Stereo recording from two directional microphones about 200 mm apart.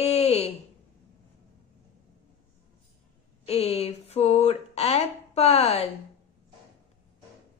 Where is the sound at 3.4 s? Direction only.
30° left (ahead or behind).